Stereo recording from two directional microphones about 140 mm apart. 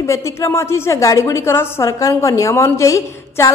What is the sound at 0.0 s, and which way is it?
A woman's voice, 20° left (ahead or behind).